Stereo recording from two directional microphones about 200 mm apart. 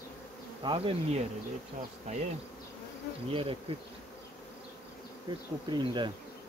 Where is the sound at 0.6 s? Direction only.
25° right (ahead or behind).